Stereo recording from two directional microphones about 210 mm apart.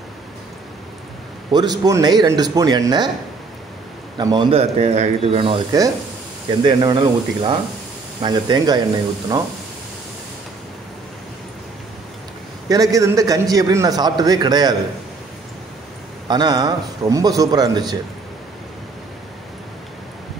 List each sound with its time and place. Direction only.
1.5 s a man's voice: 20° right (ahead or behind)
4.2 s a man's voice: 20° right (ahead or behind)
12.6 s a man's voice: 15° right (ahead or behind)
16.3 s a man's voice: 20° right (ahead or behind)